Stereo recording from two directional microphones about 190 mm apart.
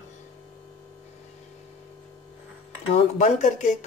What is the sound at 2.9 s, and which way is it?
Speech, 40° left (ahead or behind).